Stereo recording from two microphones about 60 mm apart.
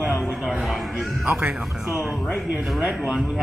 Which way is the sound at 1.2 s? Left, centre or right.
Centre.